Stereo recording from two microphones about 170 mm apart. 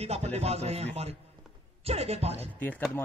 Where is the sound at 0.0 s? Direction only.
40° right (ahead or behind).